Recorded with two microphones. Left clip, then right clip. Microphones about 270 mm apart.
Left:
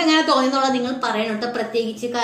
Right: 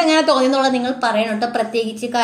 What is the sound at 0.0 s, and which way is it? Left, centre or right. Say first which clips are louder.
A woman's voice: right 3 dB; right.